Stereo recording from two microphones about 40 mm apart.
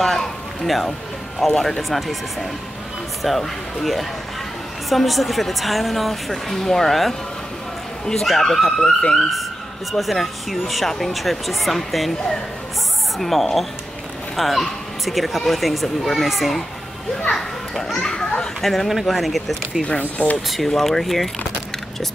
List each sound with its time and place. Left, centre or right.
0.0 s a sound: centre
1.4 s speech: centre
3.3 s speech: centre
8.4 s speech: centre
9.9 s speech: centre
17.3 s a child's voice: centre
18.0 s children playing: centre
18.6 s speech: centre
20.0 s speech: left
20.4 s speech: centre